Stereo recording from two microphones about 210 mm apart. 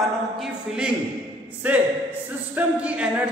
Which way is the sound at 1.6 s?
10° right (ahead or behind).